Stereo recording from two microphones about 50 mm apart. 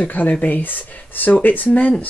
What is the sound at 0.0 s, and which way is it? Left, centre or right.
Speech, left.